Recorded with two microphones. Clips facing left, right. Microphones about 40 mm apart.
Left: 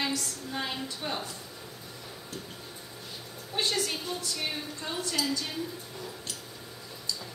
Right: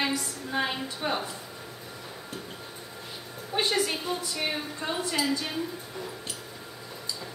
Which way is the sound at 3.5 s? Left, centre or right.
Centre.